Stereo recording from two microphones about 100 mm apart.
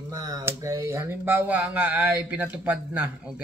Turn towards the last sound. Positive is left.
turn(degrees=-15)  # may be behind; listen again after turning